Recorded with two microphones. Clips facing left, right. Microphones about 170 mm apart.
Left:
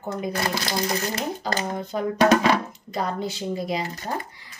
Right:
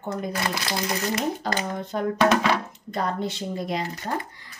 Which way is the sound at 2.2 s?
40° left (ahead or behind).